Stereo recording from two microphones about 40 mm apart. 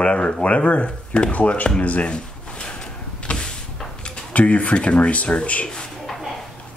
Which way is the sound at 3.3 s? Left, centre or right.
Left.